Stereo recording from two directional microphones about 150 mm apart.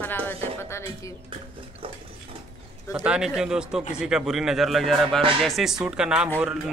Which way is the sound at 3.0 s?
5° right (ahead or behind).